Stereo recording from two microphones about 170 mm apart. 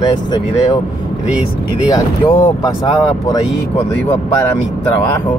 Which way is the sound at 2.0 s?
20° left (ahead or behind).